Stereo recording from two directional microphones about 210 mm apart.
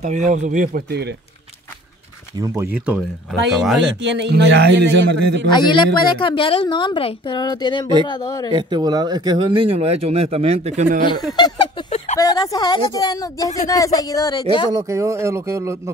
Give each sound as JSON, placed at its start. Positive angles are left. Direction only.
{"t": 0.0, "sound": "speech", "side_deg": -35}
{"t": 2.3, "sound": "speech", "side_deg": -15}
{"t": 4.0, "sound": "a man's voice", "side_deg": -55}
{"t": 5.5, "sound": "a woman's voice", "side_deg": 20}
{"t": 8.5, "sound": "speech", "side_deg": -20}
{"t": 11.3, "sound": "a sound", "side_deg": 20}
{"t": 12.2, "sound": "a woman's voice", "side_deg": 15}
{"t": 14.9, "sound": "speech", "side_deg": -15}